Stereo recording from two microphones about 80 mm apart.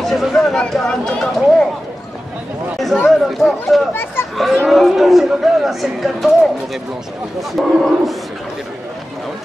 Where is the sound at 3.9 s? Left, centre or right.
Left.